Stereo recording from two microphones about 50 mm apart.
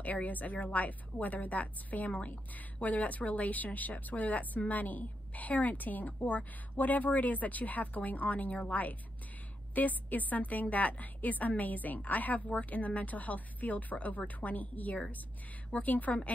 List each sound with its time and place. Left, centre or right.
0.0 s a woman's voice: left